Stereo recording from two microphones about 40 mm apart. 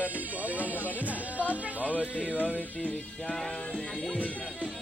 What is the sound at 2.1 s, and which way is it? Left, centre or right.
Music, left.